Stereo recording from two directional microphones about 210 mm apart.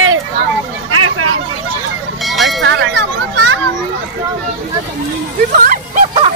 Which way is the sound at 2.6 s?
60° right (ahead or behind).